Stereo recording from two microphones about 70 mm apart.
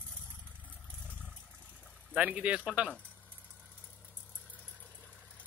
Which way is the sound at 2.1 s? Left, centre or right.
Centre.